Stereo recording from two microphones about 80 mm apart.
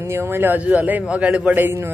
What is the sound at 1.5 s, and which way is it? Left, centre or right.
Speech, right.